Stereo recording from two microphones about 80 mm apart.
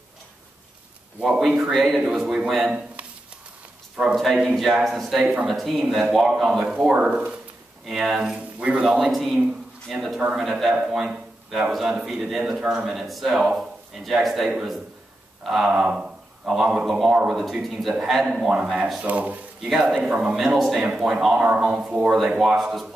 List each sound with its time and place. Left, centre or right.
1.2 s a man's voice: centre
3.9 s a man's voice: centre
5.2 s a man's voice: centre
5.5 s a man's voice: centre
19.7 s a man's voice: centre
20.3 s a man's voice: centre